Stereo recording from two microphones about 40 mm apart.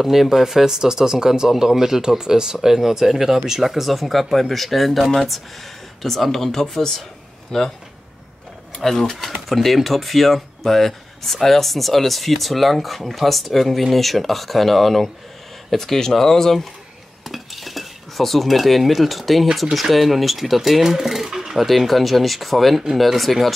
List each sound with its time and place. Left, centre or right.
0.0 s speech: centre
8.7 s speech: centre
17.2 s speech: centre
21.6 s speech: centre